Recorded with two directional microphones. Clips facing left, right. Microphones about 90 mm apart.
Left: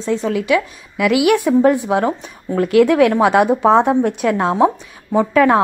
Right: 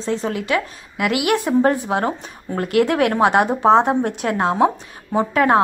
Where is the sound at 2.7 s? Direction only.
30° right (ahead or behind).